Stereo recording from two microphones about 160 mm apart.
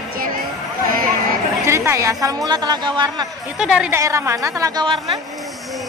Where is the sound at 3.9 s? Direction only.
15° right (ahead or behind).